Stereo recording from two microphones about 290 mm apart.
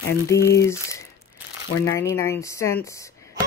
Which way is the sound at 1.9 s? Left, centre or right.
Centre.